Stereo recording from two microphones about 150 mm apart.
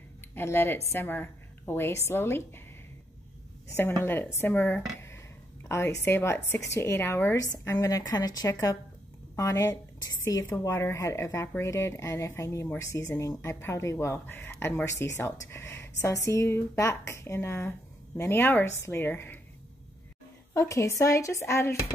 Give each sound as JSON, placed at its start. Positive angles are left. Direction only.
{"t": 0.3, "sound": "a woman's voice", "side_deg": 15}
{"t": 4.0, "sound": "a woman's voice", "side_deg": 15}
{"t": 20.5, "sound": "a woman's voice", "side_deg": 20}